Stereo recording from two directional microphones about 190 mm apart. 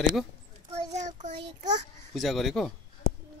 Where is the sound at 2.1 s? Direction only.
Centre (ahead or behind).